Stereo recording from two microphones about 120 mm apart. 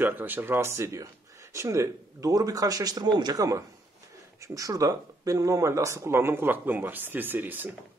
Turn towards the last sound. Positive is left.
turn(degrees=-15)  # may be behind; listen again after turning